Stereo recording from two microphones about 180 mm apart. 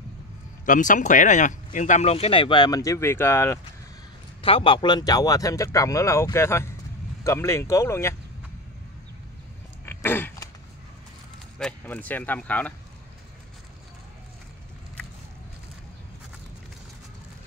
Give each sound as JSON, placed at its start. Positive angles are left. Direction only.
{"t": 0.7, "sound": "speech", "side_deg": 45}
{"t": 4.4, "sound": "speech", "side_deg": 30}
{"t": 9.8, "sound": "dog", "side_deg": 10}
{"t": 11.5, "sound": "speech", "side_deg": 5}